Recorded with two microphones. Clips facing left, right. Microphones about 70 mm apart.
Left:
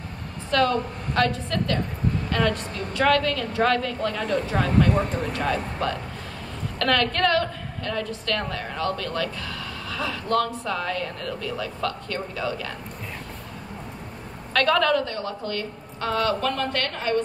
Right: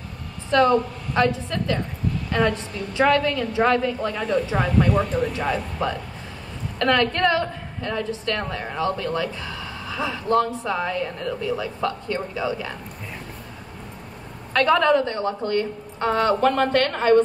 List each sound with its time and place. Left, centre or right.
0.5 s a woman's voice: right
1.2 s a woman's voice: centre
4.6 s speech: left
5.3 s a woman's voice: centre
14.5 s a woman's voice: centre; by 17.2 s right